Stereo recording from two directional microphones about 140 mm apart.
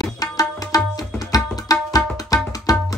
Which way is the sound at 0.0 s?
25° left (ahead or behind).